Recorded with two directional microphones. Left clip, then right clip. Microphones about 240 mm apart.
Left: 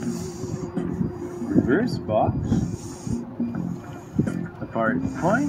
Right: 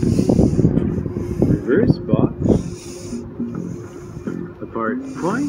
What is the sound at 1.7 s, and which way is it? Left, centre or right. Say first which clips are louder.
Speech: right 5 dB; centre.